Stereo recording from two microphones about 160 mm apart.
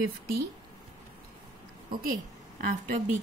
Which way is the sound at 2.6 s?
55° right (ahead or behind).